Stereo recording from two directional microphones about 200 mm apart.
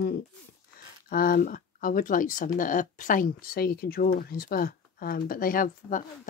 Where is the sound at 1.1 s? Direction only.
45° left (ahead or behind).